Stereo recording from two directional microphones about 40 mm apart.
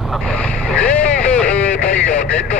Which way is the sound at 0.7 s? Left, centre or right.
Left.